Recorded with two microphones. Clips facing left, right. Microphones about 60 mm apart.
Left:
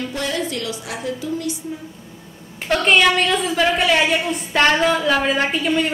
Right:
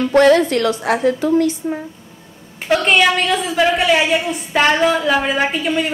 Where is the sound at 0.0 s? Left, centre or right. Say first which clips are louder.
Right 13 dB; right.